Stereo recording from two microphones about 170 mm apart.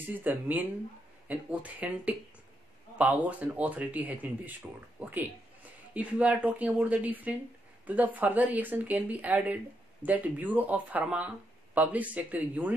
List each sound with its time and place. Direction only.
0.1 s speech: 10° right (ahead or behind)